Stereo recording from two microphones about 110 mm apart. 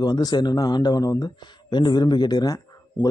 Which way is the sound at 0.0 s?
40° left (ahead or behind).